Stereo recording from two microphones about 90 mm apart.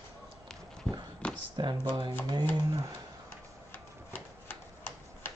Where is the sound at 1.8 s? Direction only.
60° right (ahead or behind).